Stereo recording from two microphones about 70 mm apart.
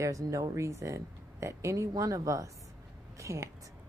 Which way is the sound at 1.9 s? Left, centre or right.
Right.